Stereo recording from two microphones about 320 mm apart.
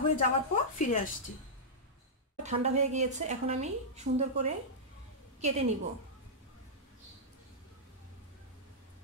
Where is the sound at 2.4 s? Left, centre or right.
Right.